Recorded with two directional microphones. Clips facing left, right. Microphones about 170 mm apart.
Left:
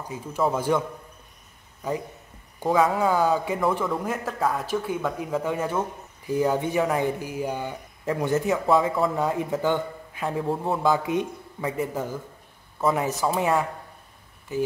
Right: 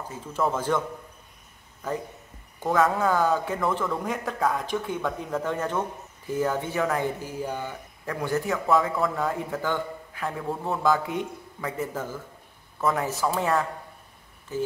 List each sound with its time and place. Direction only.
0.1 s speech: 10° left (ahead or behind)
3.0 s a man's voice: 10° left (ahead or behind)